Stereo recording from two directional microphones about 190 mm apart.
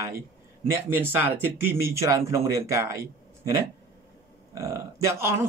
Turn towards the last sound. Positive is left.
turn(degrees=-15)  # may be behind; listen again after turning